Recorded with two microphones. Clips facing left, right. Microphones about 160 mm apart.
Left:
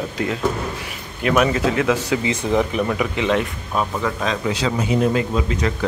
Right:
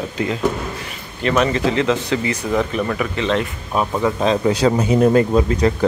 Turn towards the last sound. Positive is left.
turn(degrees=-40)  # may be behind; listen again after turning